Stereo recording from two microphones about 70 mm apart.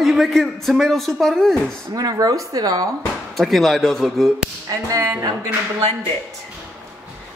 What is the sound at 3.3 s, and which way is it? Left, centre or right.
A woman's voice, centre.